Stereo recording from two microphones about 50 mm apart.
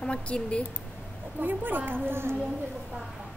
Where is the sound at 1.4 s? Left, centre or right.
Right.